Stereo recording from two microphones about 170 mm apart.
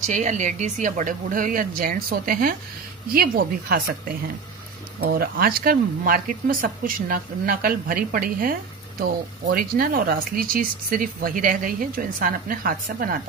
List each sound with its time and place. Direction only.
0.0 s a woman's voice: 45° right (ahead or behind)